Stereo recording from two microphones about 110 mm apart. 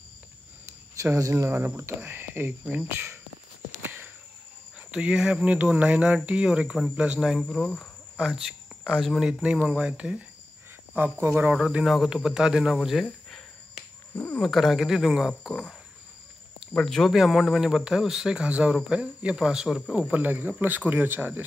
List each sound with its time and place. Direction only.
0.9 s speech: 25° right (ahead or behind)
3.8 s a sound: 20° right (ahead or behind)
4.7 s cricket: 10° right (ahead or behind)
11.0 s cricket: 20° right (ahead or behind)
11.7 s speech: 5° right (ahead or behind)
14.2 s speech: 5° left (ahead or behind)
16.7 s speech: 5° left (ahead or behind)
18.8 s cricket: 10° right (ahead or behind)